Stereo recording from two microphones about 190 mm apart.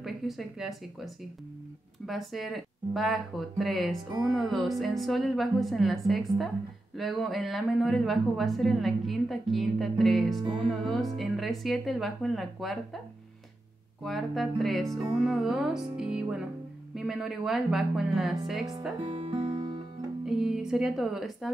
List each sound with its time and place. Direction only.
0.0 s a woman's voice: centre (ahead or behind)
14.0 s a woman's voice: centre (ahead or behind)
19.0 s music: 30° right (ahead or behind)
20.2 s a woman's voice: centre (ahead or behind)